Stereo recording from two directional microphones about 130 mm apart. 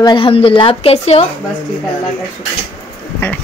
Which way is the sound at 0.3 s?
45° left (ahead or behind).